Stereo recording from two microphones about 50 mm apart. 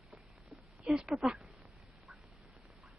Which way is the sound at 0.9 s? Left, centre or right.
Centre.